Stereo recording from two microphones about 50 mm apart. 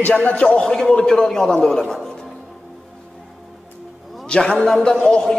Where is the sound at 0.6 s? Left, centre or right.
Centre.